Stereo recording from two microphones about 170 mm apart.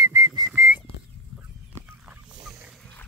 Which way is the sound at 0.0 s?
20° right (ahead or behind).